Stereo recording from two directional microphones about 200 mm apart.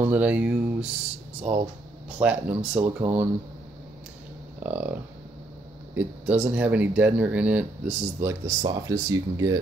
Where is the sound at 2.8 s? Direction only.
35° right (ahead or behind).